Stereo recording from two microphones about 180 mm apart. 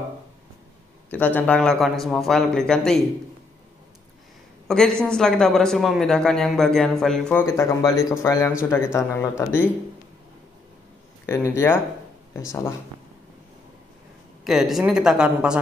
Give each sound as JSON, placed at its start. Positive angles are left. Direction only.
{"t": 1.1, "sound": "speech", "side_deg": 10}
{"t": 4.6, "sound": "speech", "side_deg": 5}
{"t": 7.4, "sound": "speech", "side_deg": 15}
{"t": 11.2, "sound": "speech", "side_deg": 15}
{"t": 14.4, "sound": "speech", "side_deg": 0}